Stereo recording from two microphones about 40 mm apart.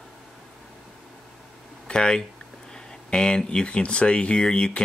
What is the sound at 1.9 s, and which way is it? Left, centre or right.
Speech, centre.